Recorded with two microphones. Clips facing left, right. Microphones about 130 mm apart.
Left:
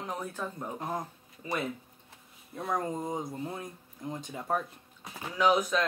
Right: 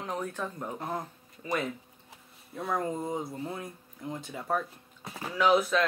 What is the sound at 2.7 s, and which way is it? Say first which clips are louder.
Speech: right 1 dB; 20° left (ahead or behind).